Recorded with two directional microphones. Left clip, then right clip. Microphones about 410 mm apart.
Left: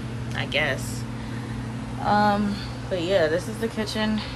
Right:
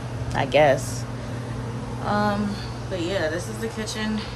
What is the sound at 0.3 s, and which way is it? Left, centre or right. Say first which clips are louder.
Speech: right 7 dB; centre.